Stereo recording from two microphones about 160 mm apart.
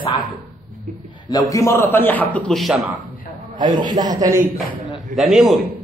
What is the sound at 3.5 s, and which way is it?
Speech, 30° right (ahead or behind).